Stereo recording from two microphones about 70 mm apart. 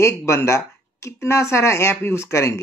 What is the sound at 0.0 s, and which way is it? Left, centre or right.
Speech, left.